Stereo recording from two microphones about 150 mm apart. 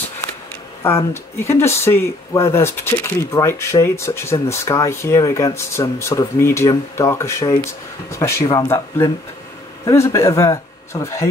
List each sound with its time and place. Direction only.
0.8 s speech: 15° left (ahead or behind)